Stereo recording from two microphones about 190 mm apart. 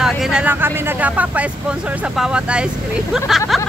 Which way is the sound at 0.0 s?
5° right (ahead or behind).